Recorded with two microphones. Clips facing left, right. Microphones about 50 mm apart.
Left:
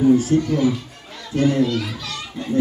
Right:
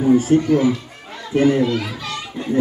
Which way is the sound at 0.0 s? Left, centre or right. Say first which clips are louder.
Right 1 dB; right.